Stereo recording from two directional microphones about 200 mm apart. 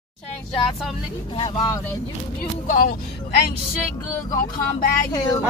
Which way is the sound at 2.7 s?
45° left (ahead or behind).